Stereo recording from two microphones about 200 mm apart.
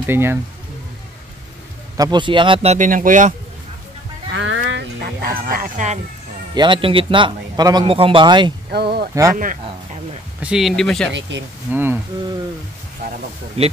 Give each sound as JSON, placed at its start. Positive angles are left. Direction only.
{"t": 0.0, "sound": "speech", "side_deg": -10}
{"t": 2.0, "sound": "speech", "side_deg": -20}
{"t": 4.3, "sound": "a sound", "side_deg": -65}
{"t": 6.5, "sound": "a man's voice", "side_deg": -25}
{"t": 8.7, "sound": "speech", "side_deg": -50}
{"t": 9.1, "sound": "speech", "side_deg": -15}
{"t": 10.4, "sound": "speech", "side_deg": 0}
{"t": 11.1, "sound": "speech", "side_deg": -65}
{"t": 11.7, "sound": "speech", "side_deg": -10}